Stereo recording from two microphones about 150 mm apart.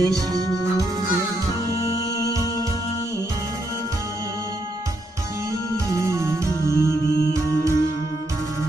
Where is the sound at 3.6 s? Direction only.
25° left (ahead or behind).